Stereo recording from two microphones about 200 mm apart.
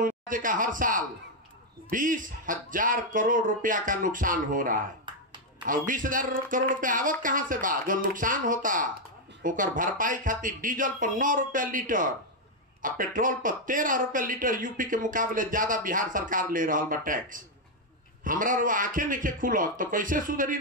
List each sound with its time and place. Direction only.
0.0 s speech: 40° right (ahead or behind)